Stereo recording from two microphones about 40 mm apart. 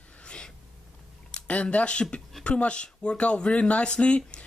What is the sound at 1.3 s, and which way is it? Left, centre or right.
Speech, left.